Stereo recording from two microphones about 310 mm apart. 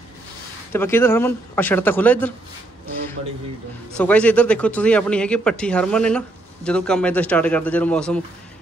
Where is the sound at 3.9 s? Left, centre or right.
Centre.